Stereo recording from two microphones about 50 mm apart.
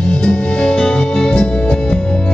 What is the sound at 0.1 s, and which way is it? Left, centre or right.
Music, left.